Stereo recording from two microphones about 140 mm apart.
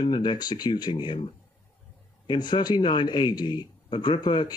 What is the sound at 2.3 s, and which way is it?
Speech, 30° left (ahead or behind).